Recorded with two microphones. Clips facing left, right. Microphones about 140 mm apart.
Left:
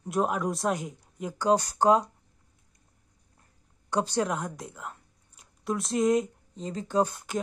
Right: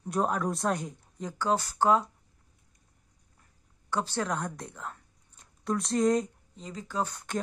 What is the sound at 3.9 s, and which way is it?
Speech, 15° left (ahead or behind).